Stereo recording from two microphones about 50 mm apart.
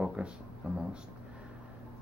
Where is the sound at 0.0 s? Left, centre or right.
Centre.